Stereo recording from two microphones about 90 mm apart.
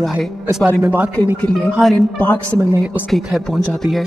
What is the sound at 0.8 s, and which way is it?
Speech, 20° right (ahead or behind).